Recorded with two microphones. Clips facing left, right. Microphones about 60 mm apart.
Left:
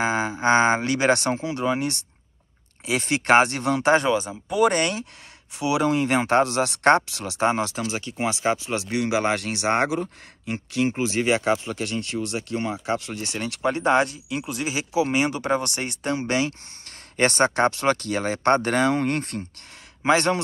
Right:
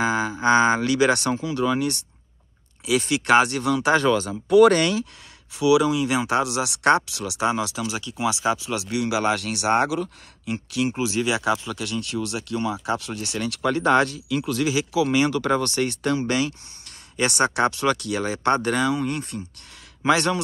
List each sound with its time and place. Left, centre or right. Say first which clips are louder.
0.0 s speech: right 1 dB; left
4.1 s speech: right 6 dB; centre
4.7 s speech: right 2 dB; left
20.1 s speech: even; left